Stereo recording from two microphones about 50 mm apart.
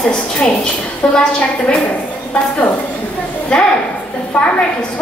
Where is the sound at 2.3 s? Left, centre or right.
Left.